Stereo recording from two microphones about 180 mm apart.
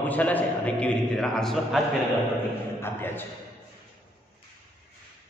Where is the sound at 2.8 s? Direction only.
10° left (ahead or behind).